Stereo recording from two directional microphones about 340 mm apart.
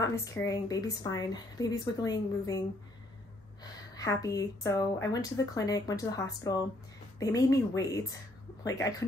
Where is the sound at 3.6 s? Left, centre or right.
Centre.